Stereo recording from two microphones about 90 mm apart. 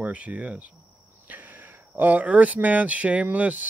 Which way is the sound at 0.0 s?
15° right (ahead or behind).